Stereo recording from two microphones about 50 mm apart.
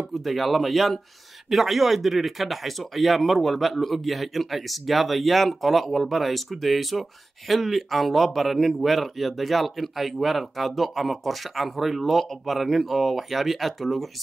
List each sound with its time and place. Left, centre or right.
0.1 s speech: centre